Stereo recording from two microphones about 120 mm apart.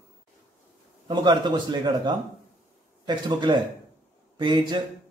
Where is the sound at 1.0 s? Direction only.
35° right (ahead or behind).